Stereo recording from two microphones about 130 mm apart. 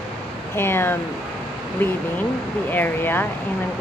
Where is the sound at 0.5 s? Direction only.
20° left (ahead or behind).